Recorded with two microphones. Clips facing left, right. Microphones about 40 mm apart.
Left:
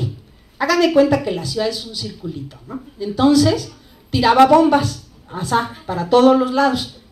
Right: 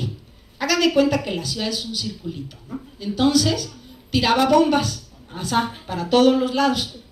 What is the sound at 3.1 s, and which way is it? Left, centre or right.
A woman's voice, left.